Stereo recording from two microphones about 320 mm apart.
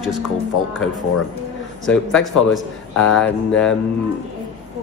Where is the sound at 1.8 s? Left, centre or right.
Centre.